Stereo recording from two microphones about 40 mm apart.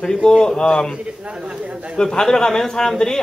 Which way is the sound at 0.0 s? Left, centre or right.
Centre.